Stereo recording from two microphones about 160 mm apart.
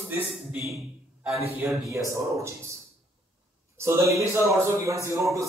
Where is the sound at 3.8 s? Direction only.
15° right (ahead or behind).